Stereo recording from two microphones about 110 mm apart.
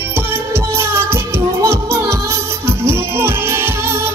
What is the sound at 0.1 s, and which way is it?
Music, 20° right (ahead or behind).